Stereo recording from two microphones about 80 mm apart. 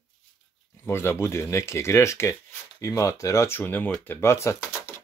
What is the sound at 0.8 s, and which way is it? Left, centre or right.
Speech, left.